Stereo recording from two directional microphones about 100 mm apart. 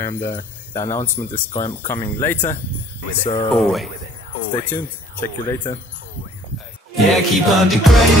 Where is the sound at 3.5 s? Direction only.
Centre (ahead or behind).